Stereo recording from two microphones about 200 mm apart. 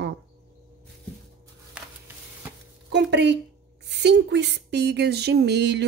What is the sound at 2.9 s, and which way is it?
Speech, 60° right (ahead or behind).